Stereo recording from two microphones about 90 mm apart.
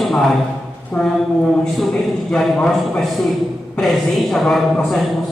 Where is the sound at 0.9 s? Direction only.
35° left (ahead or behind).